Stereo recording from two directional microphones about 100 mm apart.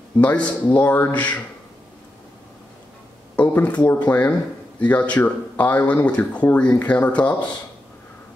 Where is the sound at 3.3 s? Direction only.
15° left (ahead or behind).